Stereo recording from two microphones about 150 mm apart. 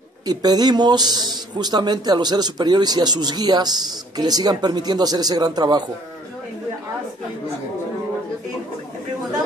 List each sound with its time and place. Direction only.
0.3 s speech: 25° right (ahead or behind)